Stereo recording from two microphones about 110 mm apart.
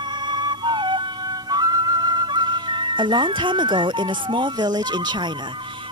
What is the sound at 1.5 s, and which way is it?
Speech, 35° right (ahead or behind).